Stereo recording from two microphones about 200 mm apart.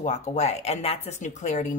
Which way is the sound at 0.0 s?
35° left (ahead or behind).